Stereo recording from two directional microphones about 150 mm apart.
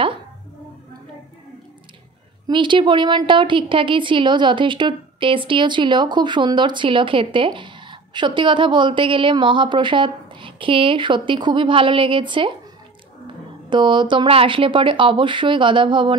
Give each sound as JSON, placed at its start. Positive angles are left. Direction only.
{"t": 2.4, "sound": "a woman's voice", "side_deg": -30}
{"t": 13.7, "sound": "a woman's voice", "side_deg": -30}